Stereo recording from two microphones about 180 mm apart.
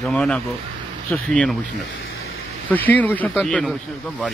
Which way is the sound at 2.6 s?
10° left (ahead or behind).